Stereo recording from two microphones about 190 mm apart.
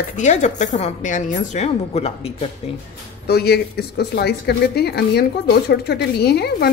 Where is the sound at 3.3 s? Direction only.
55° left (ahead or behind).